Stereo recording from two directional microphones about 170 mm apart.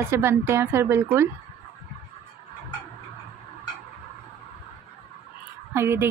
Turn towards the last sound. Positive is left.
turn(degrees=-15)  # may be behind; listen again after turning